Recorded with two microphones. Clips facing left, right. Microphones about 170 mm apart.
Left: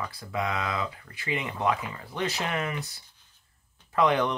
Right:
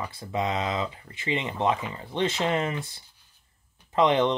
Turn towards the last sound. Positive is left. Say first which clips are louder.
# right 2 dB
turn(degrees=-20)  # may be behind; listen again after turning